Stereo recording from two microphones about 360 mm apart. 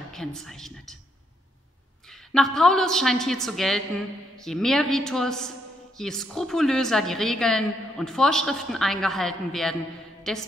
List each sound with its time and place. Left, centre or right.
0.1 s a woman's voice: centre
2.0 s a woman's voice: centre